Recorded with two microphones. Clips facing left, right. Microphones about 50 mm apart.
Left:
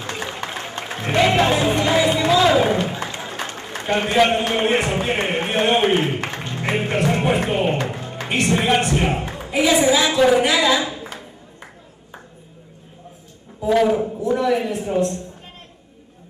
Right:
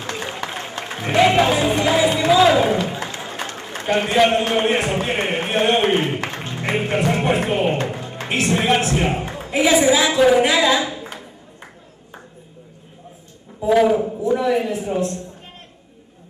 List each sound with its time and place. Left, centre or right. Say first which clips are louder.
0.4 s a sound: right 1 dB; centre
0.8 s speech: right 2 dB; centre
3.2 s applause: even; centre
3.5 s a man's voice: right 2 dB; centre
7.8 s music: right 1 dB; centre
8.3 s a woman's voice: even; centre
11.1 s a sound: even; centre
13.6 s a woman's voice: right 2 dB; centre